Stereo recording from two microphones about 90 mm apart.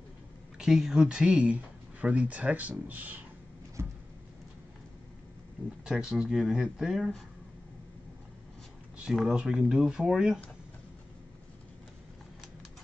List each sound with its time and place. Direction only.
0.6 s speech: 5° right (ahead or behind)
3.8 s a sound: 25° right (ahead or behind)
5.9 s speech: 5° right (ahead or behind)
7.0 s speech: 5° left (ahead or behind)
8.9 s speech: 5° right (ahead or behind)